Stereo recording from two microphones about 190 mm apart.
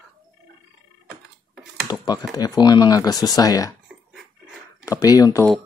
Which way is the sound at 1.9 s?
20° left (ahead or behind).